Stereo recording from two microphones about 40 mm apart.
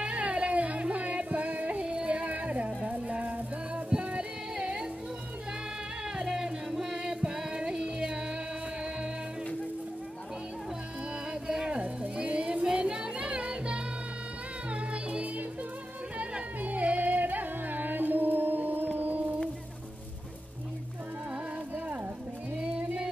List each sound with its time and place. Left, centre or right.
0.0 s music: right
6.1 s music: centre
11.4 s music: centre
11.8 s music: right
16.6 s carnatic music: right
18.9 s music: right